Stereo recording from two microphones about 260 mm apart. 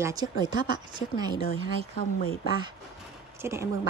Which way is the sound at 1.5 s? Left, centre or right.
Left.